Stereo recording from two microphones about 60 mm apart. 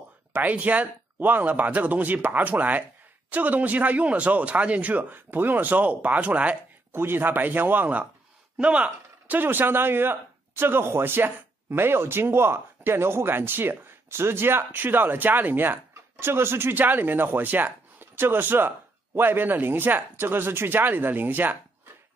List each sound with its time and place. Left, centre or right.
0.3 s a man's voice: right
6.9 s a man's voice: right
9.4 s a man's voice: right